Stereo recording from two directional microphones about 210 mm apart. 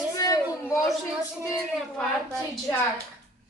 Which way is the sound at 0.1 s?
15° left (ahead or behind).